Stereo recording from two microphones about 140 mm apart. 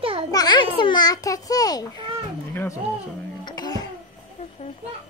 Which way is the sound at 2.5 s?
15° left (ahead or behind).